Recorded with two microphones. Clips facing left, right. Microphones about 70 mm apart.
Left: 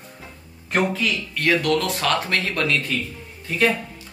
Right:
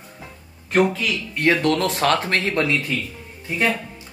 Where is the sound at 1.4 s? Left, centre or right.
Right.